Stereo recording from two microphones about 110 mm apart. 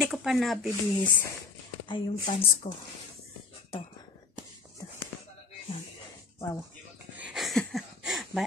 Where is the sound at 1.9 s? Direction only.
55° left (ahead or behind).